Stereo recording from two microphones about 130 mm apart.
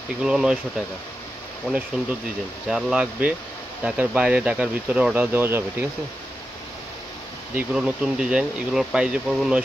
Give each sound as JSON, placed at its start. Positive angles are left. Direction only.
{"t": 0.2, "sound": "speech", "side_deg": -5}
{"t": 2.7, "sound": "speech", "side_deg": -5}
{"t": 7.5, "sound": "speech", "side_deg": -5}